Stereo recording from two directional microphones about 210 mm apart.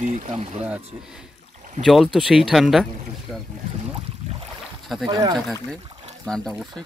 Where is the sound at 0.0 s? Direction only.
35° right (ahead or behind).